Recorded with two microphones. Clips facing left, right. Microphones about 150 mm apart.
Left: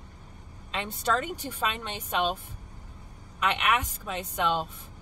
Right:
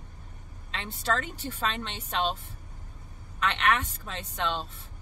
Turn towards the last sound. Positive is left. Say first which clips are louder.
# left 4 dB
turn(degrees=15)  # may be behind; listen again after turning